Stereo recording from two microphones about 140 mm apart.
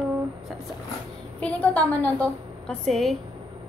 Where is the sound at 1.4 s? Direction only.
10° left (ahead or behind).